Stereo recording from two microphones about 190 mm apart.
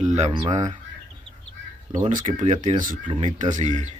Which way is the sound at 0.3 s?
35° right (ahead or behind).